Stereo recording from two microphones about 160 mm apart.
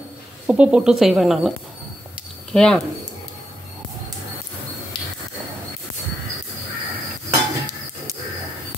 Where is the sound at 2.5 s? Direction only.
5° left (ahead or behind).